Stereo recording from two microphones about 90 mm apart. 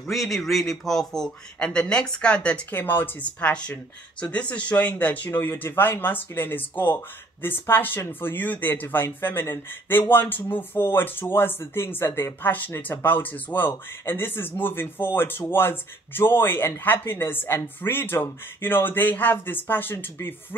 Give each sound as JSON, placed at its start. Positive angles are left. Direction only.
{"t": 0.0, "sound": "a man's voice", "side_deg": 0}
{"t": 5.4, "sound": "speech", "side_deg": 30}